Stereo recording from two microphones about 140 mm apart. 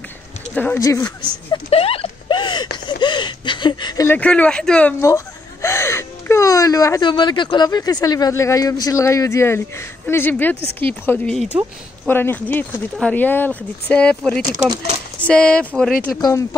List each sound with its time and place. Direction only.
0.7 s speech: 25° left (ahead or behind)
1.7 s a sound: 45° left (ahead or behind); by 4.2 s 25° left (ahead or behind)
4.2 s speech: 10° left (ahead or behind)
5.0 s speech: 20° left (ahead or behind)
16.2 s speech: 25° left (ahead or behind)